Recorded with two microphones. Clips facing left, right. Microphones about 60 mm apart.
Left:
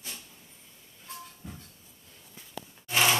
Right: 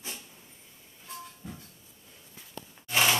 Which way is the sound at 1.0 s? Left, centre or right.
Centre.